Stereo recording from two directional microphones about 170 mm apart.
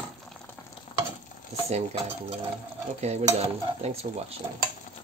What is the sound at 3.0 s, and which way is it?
Dishes, 40° right (ahead or behind).